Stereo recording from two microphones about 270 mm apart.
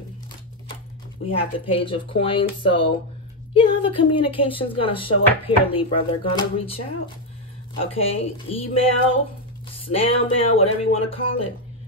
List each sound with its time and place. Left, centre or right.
1.2 s speech: centre
7.9 s speech: left